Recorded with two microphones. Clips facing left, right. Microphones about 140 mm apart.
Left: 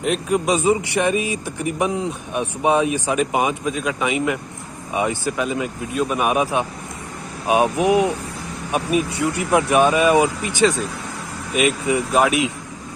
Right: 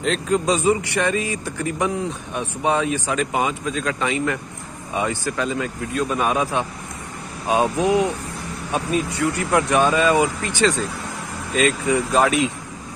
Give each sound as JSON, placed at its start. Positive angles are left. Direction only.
{"t": 0.0, "sound": "speech", "side_deg": 15}